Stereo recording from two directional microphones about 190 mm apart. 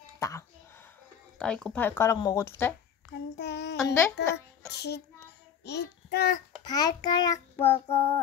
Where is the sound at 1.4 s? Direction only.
5° left (ahead or behind).